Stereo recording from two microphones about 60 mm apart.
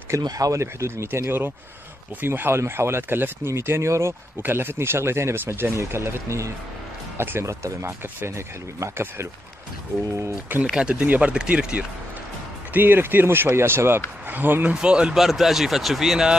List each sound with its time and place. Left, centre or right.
0.3 s speech: right
1.0 s speech: right
3.5 s speech: right
4.4 s speech: right
7.2 s speech: right
8.9 s speech: right
10.5 s speech: right
12.7 s speech: right
14.7 s speech: centre
15.1 s a man's voice: centre